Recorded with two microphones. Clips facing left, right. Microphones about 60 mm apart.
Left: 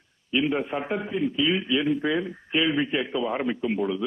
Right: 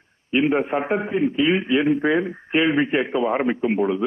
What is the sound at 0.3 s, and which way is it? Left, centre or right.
A man's voice, right.